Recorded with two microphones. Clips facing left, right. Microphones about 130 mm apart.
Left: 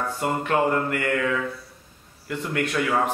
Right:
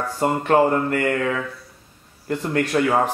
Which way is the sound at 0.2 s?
35° right (ahead or behind).